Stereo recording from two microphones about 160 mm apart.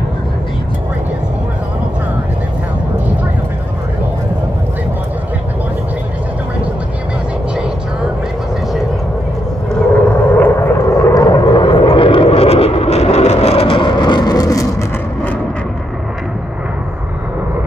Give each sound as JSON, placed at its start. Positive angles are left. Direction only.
{"t": 9.9, "sound": "vehicle", "side_deg": 10}